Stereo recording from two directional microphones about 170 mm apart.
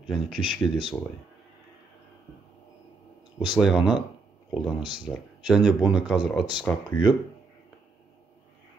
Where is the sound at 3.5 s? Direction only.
Centre (ahead or behind).